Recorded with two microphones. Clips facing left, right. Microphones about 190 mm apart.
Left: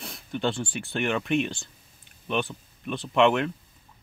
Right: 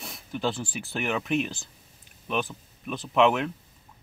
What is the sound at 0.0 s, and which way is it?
Speech, centre (ahead or behind).